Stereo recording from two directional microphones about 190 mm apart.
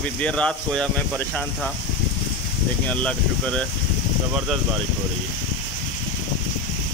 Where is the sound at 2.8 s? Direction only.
5° left (ahead or behind).